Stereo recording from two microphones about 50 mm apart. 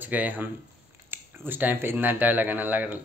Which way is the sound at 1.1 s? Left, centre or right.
Right.